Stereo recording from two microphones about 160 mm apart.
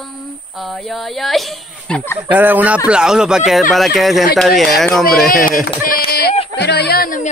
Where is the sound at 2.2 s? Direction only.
10° right (ahead or behind).